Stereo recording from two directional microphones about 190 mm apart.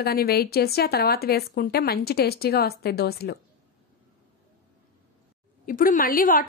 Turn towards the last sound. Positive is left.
turn(degrees=45)  # may be behind; listen again after turning